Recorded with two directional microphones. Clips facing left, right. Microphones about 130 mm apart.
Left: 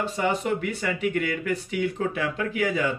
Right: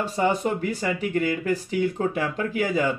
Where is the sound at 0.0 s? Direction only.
35° right (ahead or behind).